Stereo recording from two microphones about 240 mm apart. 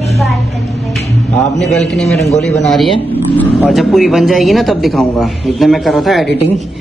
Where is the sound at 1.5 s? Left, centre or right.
Centre.